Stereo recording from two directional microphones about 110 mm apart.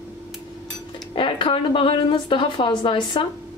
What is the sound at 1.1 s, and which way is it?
Speech, 50° left (ahead or behind).